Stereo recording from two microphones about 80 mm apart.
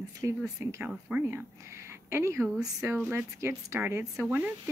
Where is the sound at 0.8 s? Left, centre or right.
Centre.